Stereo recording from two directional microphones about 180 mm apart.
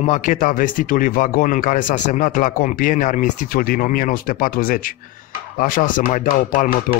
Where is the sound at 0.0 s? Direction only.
45° left (ahead or behind).